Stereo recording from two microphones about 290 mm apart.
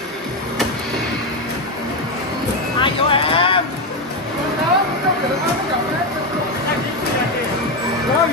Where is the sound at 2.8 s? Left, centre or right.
Centre.